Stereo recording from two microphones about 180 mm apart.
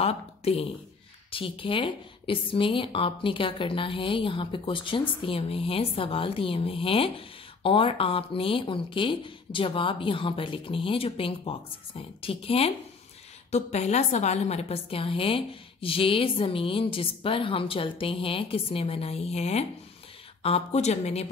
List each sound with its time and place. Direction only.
0.0 s a woman's voice: 35° left (ahead or behind)